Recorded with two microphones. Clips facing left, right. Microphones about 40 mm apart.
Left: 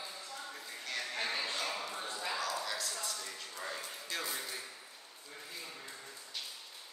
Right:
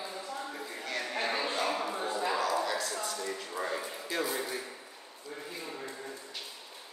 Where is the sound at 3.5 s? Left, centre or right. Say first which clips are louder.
Right 7 dB; right.